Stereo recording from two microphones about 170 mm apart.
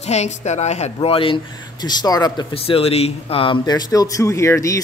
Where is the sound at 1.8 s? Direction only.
20° left (ahead or behind).